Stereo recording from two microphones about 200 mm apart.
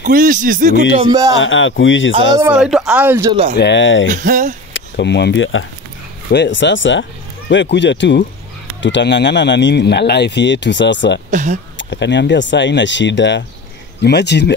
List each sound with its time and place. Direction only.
0.0 s speech: 40° right (ahead or behind)
1.3 s speech: 75° left (ahead or behind)
2.4 s speech: 5° right (ahead or behind)
3.3 s speech: 30° right (ahead or behind)
3.5 s speech: 60° left (ahead or behind)
4.1 s speech: 40° right (ahead or behind)
4.7 s speech: 60° left (ahead or behind)
6.3 s speech: 60° left (ahead or behind)
11.2 s speech: 35° right (ahead or behind)
11.9 s speech: 60° left (ahead or behind)